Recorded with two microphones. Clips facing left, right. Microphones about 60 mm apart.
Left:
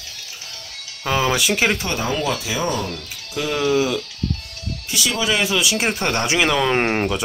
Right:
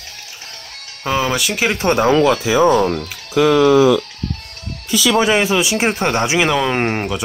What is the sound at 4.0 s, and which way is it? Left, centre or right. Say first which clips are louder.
Music: right 1 dB; right.